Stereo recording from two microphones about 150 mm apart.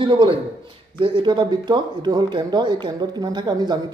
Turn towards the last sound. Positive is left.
turn(degrees=-30)  # may be behind; listen again after turning